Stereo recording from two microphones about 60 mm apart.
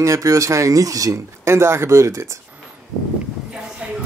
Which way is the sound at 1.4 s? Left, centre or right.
Right.